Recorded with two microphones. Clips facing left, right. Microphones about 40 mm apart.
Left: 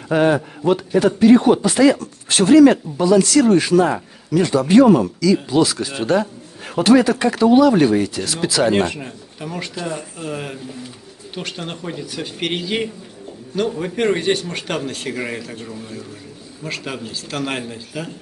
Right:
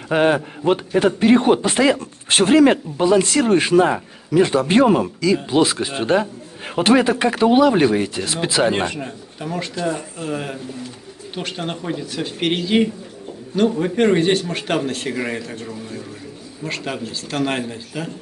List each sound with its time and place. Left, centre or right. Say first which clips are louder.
0.1 s a man's voice: left 1 dB; right
4.5 s speech: left 7 dB; right
8.8 s speech: even; centre